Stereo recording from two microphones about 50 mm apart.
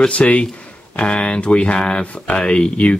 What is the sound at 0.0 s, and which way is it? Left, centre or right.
Speech, left.